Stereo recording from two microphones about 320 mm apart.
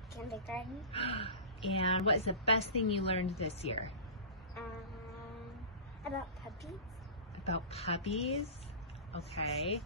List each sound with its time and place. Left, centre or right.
0.1 s a woman's voice: centre
0.9 s a woman's voice: centre
6.0 s speech: centre
7.4 s a woman's voice: centre